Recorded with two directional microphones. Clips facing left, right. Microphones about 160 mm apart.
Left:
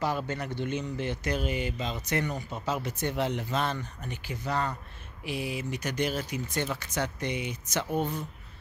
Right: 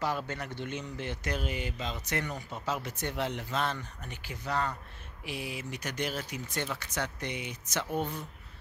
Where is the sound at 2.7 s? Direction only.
Centre (ahead or behind).